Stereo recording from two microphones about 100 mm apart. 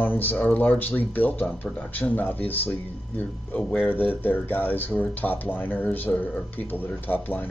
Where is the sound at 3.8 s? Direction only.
20° left (ahead or behind).